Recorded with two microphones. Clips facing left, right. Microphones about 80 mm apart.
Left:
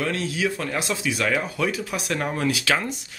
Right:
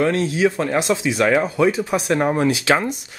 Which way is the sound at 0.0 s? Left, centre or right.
Right.